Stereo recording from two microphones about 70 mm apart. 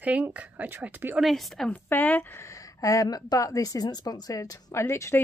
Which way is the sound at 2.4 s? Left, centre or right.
Left.